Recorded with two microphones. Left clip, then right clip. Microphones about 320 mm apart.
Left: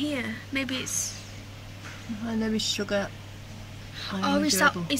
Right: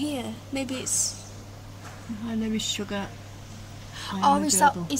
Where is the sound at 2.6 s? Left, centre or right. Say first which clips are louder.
Left 3 dB; left.